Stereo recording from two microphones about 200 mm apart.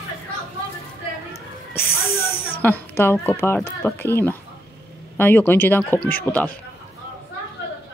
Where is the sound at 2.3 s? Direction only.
30° left (ahead or behind).